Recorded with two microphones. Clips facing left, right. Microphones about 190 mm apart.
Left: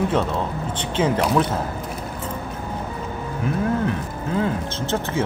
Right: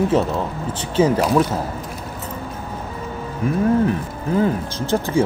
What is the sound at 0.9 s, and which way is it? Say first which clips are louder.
Speech: right 4 dB; 10° right (ahead or behind).